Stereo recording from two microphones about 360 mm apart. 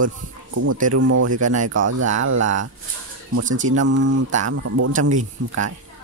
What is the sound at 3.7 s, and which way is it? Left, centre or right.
Speech, right.